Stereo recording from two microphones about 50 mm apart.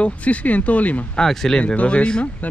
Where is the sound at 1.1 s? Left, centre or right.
Centre.